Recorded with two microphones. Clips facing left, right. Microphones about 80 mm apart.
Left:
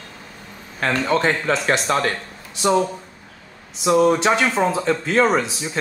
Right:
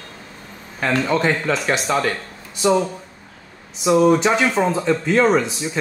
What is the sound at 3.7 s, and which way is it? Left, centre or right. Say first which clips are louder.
Speech: right 1 dB; centre.